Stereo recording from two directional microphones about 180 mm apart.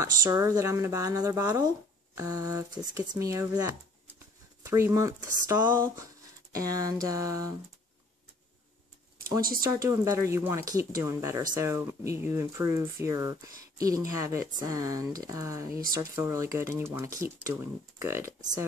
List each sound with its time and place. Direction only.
0.0 s speech: 20° right (ahead or behind)
9.6 s speech: 15° right (ahead or behind)